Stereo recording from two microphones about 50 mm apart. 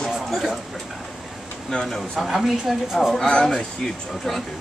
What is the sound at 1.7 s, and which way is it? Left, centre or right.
Speech, centre.